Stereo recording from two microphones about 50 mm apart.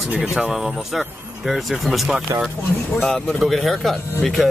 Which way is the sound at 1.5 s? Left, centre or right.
Centre.